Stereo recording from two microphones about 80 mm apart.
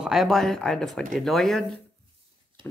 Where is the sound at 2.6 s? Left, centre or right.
Right.